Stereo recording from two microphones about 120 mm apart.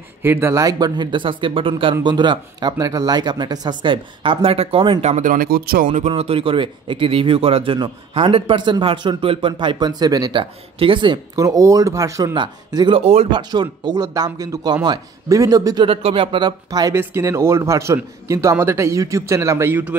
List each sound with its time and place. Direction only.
0.2 s speech: 20° right (ahead or behind); by 5.0 s 45° right (ahead or behind)
5.0 s speech: 80° right
5.9 s speech: 60° right (ahead or behind)
11.3 s a man's voice: 30° right (ahead or behind)
12.4 s speech: 40° right (ahead or behind)
13.0 s speech: 60° right (ahead or behind)
13.3 s speech: 35° right (ahead or behind)
15.9 s speech: 50° right (ahead or behind); by 16.9 s 35° right (ahead or behind)
16.9 s a man's voice: 20° right (ahead or behind)